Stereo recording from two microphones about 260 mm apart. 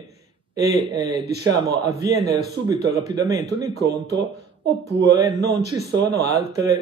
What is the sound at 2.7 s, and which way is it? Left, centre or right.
Speech, centre.